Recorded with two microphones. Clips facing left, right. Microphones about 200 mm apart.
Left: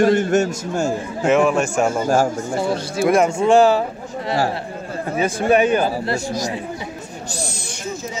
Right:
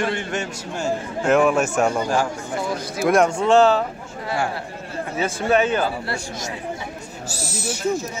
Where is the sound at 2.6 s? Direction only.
30° left (ahead or behind).